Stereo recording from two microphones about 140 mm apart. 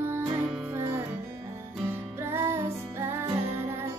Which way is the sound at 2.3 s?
20° right (ahead or behind).